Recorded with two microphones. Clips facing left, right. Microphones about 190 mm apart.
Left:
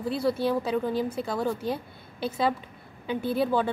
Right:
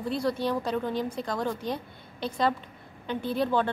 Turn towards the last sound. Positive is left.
turn(degrees=5)  # may be behind; listen again after turning